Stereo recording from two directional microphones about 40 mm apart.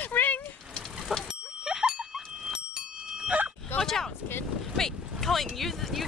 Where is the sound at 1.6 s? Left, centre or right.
Centre.